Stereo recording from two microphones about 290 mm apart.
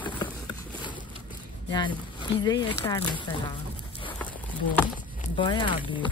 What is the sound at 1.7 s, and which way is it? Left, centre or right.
Speech, centre.